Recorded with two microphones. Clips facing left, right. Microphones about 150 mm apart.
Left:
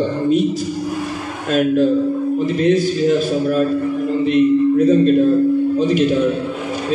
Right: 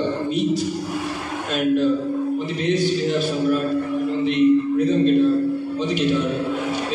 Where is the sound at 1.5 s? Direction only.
40° left (ahead or behind).